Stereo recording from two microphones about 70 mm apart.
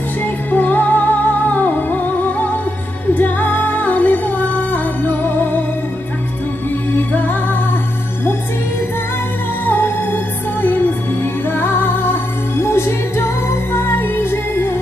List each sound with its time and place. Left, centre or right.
0.2 s music: left
7.0 s music: left
9.7 s music: left